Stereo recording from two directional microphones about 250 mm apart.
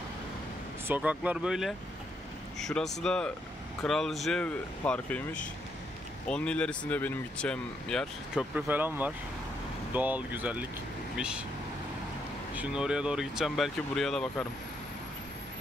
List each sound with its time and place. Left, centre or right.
0.8 s speech: centre
12.5 s speech: centre